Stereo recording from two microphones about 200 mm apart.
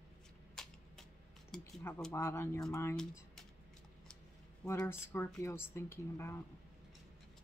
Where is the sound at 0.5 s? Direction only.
Centre (ahead or behind).